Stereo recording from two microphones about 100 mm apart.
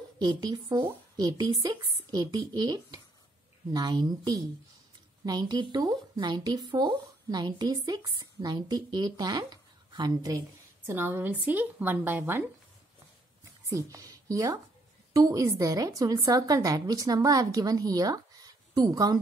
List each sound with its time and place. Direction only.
0.2 s speech: 50° right (ahead or behind)
10.9 s a woman's voice: 20° right (ahead or behind)
13.7 s a woman's voice: 35° right (ahead or behind)